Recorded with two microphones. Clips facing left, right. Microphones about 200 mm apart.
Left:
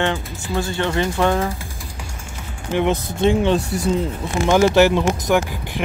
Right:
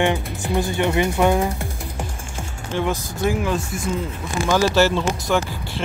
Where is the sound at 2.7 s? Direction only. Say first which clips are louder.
Left 4 dB; 20° left (ahead or behind).